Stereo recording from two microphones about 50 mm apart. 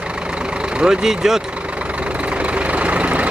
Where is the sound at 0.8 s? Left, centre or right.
Centre.